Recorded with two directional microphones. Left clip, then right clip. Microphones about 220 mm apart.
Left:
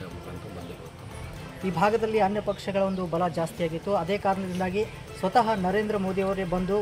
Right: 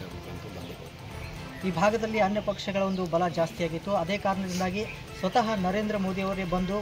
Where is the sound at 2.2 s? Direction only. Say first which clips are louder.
Left 1 dB; 35° left (ahead or behind).